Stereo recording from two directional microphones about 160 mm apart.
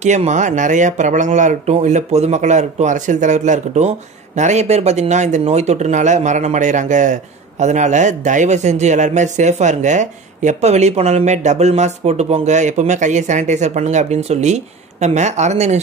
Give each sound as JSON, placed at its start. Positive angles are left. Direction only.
{"t": 0.0, "sound": "speech", "side_deg": -45}